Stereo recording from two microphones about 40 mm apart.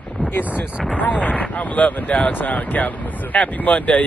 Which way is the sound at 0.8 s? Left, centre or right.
Left.